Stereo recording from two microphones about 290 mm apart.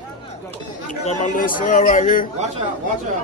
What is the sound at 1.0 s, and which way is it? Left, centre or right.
Speech, left.